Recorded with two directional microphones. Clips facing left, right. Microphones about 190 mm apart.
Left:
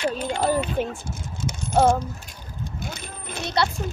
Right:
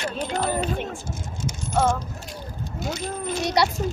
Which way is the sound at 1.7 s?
35° left (ahead or behind).